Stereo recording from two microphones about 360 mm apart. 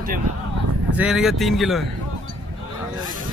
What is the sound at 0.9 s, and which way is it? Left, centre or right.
Speech, centre.